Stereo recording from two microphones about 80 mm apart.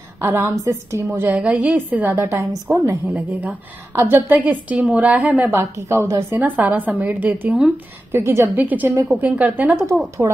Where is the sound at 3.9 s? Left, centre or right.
Right.